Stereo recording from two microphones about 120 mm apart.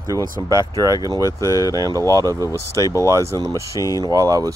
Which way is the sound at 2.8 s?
25° left (ahead or behind).